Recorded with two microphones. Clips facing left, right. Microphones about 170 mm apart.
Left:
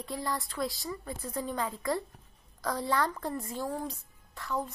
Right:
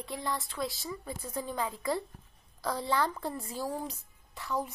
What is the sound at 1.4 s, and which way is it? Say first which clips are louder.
Speech: left 1 dB; 10° right (ahead or behind).